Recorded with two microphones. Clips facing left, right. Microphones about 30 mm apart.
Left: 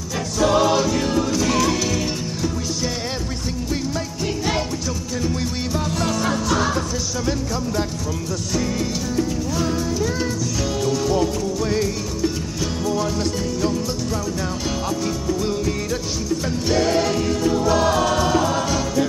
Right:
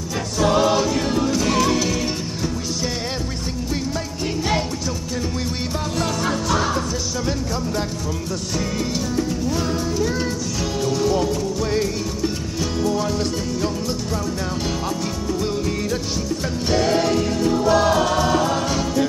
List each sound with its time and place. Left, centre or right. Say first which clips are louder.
0.5 s choir: even; centre
1.3 s music: even; right
6.7 s music: even; centre
10.9 s music: right 1 dB; centre
12.8 s music: even; centre
15.4 s music: even; centre
16.6 s music: right 1 dB; centre